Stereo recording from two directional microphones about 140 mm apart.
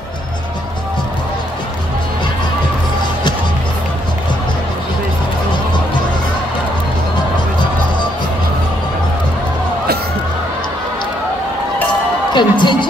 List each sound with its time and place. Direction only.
12.4 s music: 35° left (ahead or behind)